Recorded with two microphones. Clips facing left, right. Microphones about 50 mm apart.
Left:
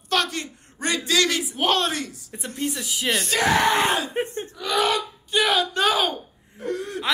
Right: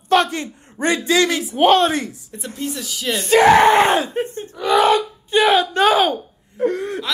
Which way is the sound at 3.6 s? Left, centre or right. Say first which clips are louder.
Right 7 dB; right.